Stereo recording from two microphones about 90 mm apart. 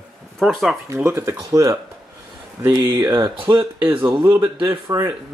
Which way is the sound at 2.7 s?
55° right (ahead or behind).